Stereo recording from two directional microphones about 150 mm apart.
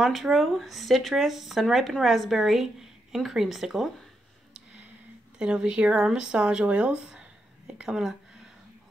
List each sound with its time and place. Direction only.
0.0 s speech: centre (ahead or behind)
5.4 s speech: 5° right (ahead or behind)